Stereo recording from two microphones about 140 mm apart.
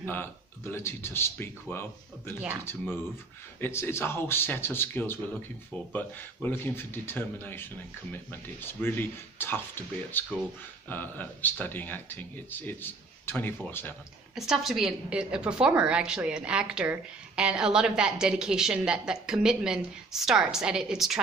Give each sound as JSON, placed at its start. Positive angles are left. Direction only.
{"t": 0.0, "sound": "speech", "side_deg": 15}
{"t": 14.3, "sound": "a woman's voice", "side_deg": -5}